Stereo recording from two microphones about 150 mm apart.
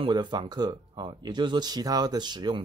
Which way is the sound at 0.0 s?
30° right (ahead or behind).